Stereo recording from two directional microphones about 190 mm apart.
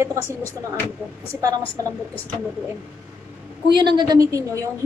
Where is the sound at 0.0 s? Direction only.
15° right (ahead or behind).